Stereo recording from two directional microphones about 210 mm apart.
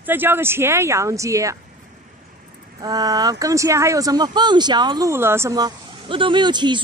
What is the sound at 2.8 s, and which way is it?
Speech, 15° right (ahead or behind).